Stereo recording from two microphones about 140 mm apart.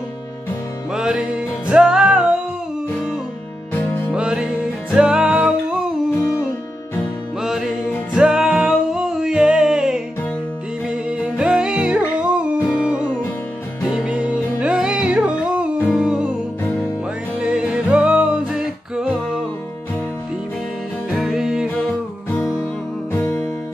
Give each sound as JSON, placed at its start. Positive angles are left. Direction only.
{"t": 0.9, "sound": "music", "side_deg": -5}
{"t": 4.1, "sound": "music", "side_deg": -5}
{"t": 7.4, "sound": "music", "side_deg": 0}
{"t": 11.1, "sound": "music", "side_deg": -5}
{"t": 17.4, "sound": "music", "side_deg": -5}
{"t": 21.1, "sound": "music", "side_deg": 0}
{"t": 23.1, "sound": "music", "side_deg": 20}